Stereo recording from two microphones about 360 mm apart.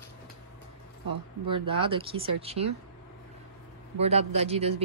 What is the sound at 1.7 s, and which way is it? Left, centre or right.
A woman's voice, centre.